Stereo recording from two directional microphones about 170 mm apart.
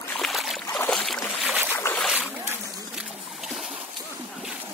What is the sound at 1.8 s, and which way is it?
Boat, 15° left (ahead or behind).